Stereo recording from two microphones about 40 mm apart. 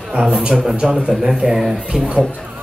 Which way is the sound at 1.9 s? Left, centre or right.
Right.